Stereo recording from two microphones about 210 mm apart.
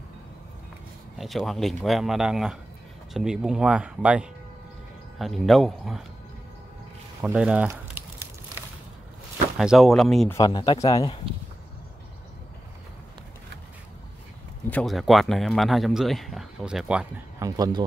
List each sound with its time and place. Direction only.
1.1 s speech: centre (ahead or behind)
7.2 s speech: 5° right (ahead or behind)
9.6 s speech: centre (ahead or behind)
10.3 s speech: 20° left (ahead or behind)
14.7 s speech: 5° left (ahead or behind)
17.4 s speech: 20° right (ahead or behind)